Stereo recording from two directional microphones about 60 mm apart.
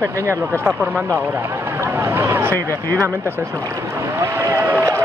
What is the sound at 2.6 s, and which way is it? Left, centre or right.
Speech, right.